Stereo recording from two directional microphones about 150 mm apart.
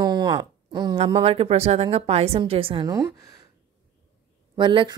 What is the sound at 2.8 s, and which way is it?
Speech, 20° right (ahead or behind).